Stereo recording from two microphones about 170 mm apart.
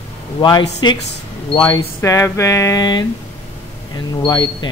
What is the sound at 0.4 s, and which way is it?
Speech, 25° left (ahead or behind).